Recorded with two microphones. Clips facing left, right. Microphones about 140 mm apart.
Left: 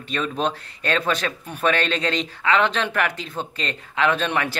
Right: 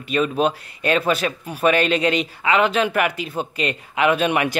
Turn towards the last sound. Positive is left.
turn(degrees=-15)  # may be behind; listen again after turning